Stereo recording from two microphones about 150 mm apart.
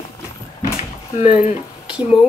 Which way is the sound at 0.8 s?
45° left (ahead or behind).